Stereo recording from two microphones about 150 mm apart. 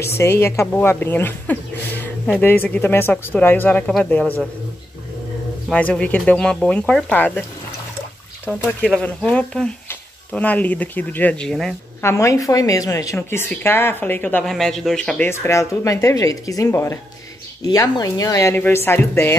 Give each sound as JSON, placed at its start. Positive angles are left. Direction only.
{"t": 0.0, "sound": "speech", "side_deg": 15}
{"t": 5.7, "sound": "speech", "side_deg": 10}
{"t": 8.5, "sound": "speech", "side_deg": 10}
{"t": 12.0, "sound": "speech", "side_deg": 20}